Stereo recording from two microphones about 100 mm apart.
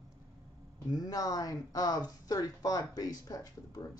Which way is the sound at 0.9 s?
35° left (ahead or behind).